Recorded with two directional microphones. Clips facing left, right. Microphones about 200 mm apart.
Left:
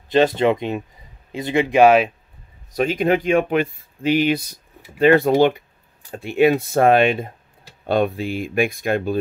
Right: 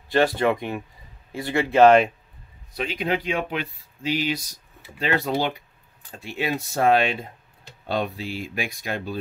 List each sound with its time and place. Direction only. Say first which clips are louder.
0.1 s speech: left 4 dB; 20° left (ahead or behind); by 2.1 s 5° left (ahead or behind)
2.7 s speech: left 8 dB; 45° left (ahead or behind)